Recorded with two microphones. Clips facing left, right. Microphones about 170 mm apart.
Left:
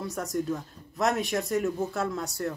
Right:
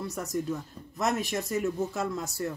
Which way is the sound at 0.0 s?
5° right (ahead or behind).